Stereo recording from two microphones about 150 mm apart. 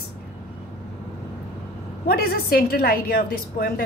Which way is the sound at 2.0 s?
90° left.